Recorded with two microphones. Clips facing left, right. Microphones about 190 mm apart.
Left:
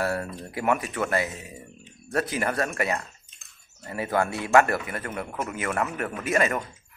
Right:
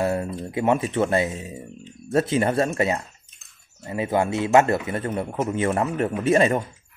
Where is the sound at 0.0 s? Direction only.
20° right (ahead or behind).